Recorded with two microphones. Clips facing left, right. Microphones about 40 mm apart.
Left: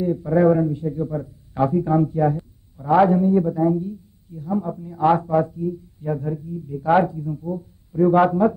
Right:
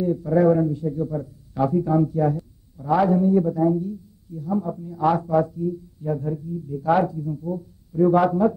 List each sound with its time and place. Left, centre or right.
0.0 s speech: left